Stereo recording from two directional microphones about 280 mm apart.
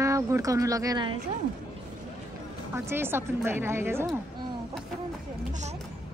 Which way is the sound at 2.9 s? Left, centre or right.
Centre.